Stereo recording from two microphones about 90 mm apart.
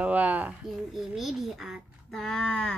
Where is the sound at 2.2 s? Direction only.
10° left (ahead or behind).